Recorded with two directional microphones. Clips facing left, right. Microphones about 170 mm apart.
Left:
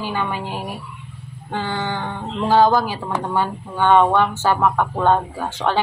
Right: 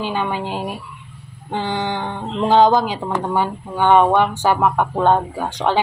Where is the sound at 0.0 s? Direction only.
20° right (ahead or behind).